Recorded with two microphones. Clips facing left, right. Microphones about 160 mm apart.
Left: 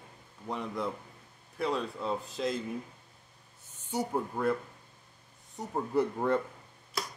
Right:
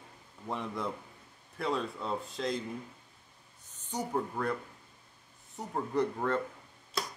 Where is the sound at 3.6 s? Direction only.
10° left (ahead or behind).